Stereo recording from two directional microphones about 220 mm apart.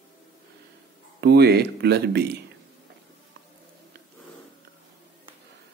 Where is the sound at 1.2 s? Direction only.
45° right (ahead or behind).